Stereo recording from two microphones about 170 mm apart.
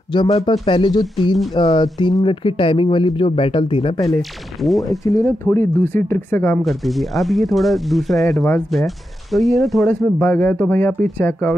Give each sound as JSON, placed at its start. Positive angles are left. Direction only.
{"t": 0.1, "sound": "speech", "side_deg": 25}
{"t": 4.6, "sound": "speech", "side_deg": 0}
{"t": 5.1, "sound": "speech", "side_deg": 15}
{"t": 6.6, "sound": "speech", "side_deg": 0}